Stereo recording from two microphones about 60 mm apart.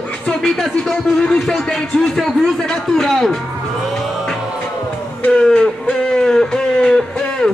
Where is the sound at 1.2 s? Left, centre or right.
Centre.